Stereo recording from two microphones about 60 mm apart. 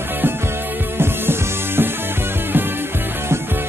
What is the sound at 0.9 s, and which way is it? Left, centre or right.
Music, right.